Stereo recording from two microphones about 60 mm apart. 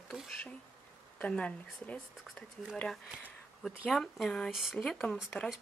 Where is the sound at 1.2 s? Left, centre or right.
Left.